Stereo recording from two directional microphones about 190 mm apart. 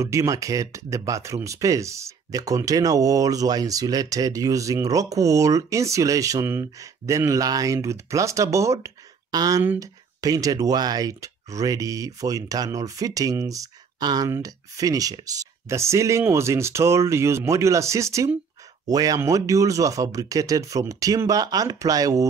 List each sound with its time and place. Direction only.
0.0 s speech: 15° right (ahead or behind)